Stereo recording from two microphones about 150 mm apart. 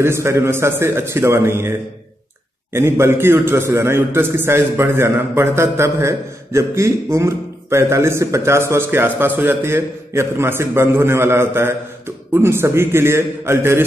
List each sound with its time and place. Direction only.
0.0 s a man's voice: 15° right (ahead or behind)